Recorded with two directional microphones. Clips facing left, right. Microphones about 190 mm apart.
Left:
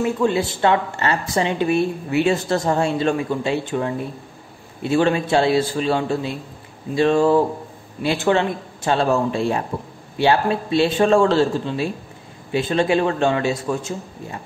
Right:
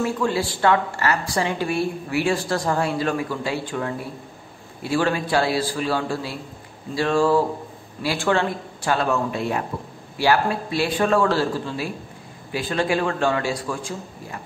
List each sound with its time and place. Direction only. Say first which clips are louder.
0.0 s a woman's voice: left 3 dB; 20° left (ahead or behind)